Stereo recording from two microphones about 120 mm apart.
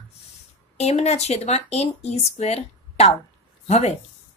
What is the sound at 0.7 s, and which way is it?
A woman's voice, 65° left (ahead or behind).